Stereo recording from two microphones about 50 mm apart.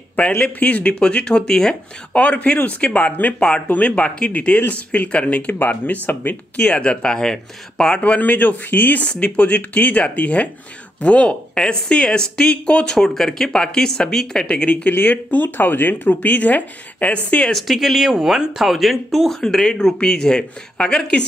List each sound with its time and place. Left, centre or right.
0.4 s speech: left; by 1.8 s centre
2.1 s speech: left
3.3 s speech: centre
3.6 s speech: left
6.7 s speech: left
8.0 s speech: left
9.1 s speech: left
14.5 s speech: left
14.9 s speech: left
17.5 s speech: centre
19.4 s speech: centre